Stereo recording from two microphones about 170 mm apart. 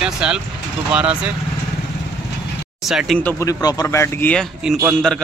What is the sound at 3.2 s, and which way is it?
A man's voice, 15° left (ahead or behind).